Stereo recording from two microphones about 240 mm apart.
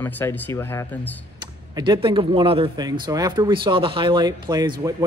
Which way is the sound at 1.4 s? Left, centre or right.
Centre.